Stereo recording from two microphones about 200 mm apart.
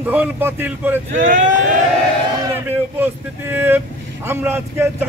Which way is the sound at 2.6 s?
10° right (ahead or behind).